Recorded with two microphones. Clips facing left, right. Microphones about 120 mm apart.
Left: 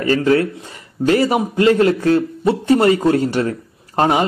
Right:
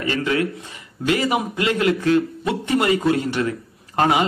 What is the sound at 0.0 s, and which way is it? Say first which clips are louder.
A man's voice: left 6 dB; 40° left (ahead or behind).